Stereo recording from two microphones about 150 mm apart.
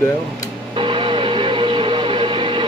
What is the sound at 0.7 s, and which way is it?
Train, 35° right (ahead or behind).